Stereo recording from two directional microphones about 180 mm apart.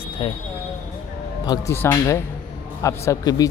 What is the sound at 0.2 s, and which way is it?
Speech, 25° left (ahead or behind).